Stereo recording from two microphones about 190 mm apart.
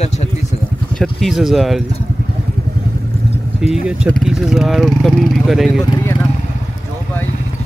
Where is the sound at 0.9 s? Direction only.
Centre (ahead or behind).